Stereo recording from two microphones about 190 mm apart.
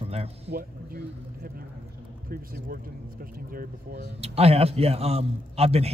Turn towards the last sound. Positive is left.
turn(degrees=-30)  # may be behind; listen again after turning